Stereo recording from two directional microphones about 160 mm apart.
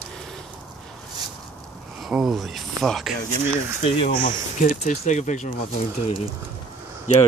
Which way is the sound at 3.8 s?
35° left (ahead or behind).